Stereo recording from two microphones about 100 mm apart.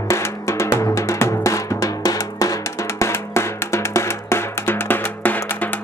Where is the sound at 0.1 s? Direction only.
30° left (ahead or behind).